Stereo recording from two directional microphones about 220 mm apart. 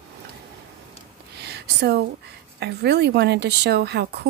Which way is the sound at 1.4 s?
50° right (ahead or behind).